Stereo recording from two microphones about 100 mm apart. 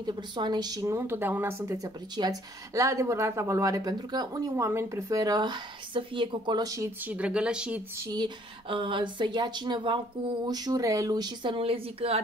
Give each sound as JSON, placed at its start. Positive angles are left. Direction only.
{"t": 0.0, "sound": "speech", "side_deg": -45}
{"t": 0.8, "sound": "speech", "side_deg": -25}
{"t": 2.2, "sound": "speech", "side_deg": -45}
{"t": 2.7, "sound": "speech", "side_deg": -30}
{"t": 4.6, "sound": "speech", "side_deg": -25}
{"t": 7.0, "sound": "speech", "side_deg": -15}
{"t": 8.6, "sound": "speech", "side_deg": -60}
{"t": 11.5, "sound": "a woman's voice", "side_deg": -70}